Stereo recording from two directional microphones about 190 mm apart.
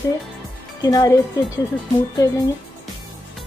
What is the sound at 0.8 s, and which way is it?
Speech, 20° left (ahead or behind).